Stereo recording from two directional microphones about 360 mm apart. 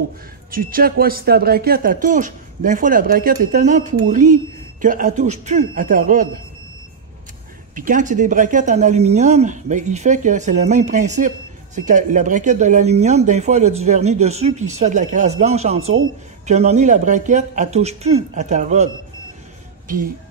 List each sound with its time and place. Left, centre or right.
0.5 s speech: right
7.7 s speech: right